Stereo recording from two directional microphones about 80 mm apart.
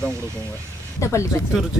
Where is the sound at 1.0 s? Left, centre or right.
Left.